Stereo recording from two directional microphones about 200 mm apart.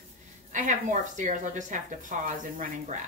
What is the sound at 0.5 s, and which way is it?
A woman's voice, 40° right (ahead or behind).